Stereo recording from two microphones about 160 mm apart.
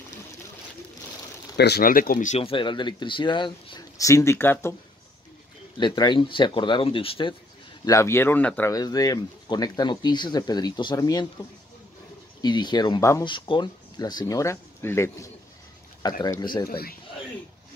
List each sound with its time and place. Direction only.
1.6 s speech: 80° left; by 2.4 s 50° left (ahead or behind)
2.4 s speech: 30° left (ahead or behind); by 4.7 s 15° left (ahead or behind)
5.8 s speech: 30° left (ahead or behind)
7.8 s speech: 20° left (ahead or behind)
8.7 s speech: 25° left (ahead or behind)
12.4 s speech: 25° left (ahead or behind)
16.6 s speech: 75° left (ahead or behind)